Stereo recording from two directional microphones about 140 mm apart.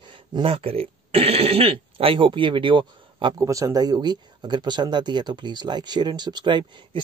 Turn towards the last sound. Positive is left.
turn(degrees=-35)  # may be behind; listen again after turning